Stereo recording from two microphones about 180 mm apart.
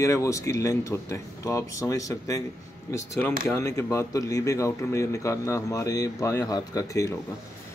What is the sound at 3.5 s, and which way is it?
Speech, 15° left (ahead or behind).